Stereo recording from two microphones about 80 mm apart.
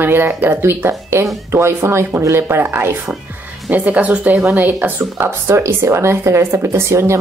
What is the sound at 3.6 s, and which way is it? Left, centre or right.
Speech, centre.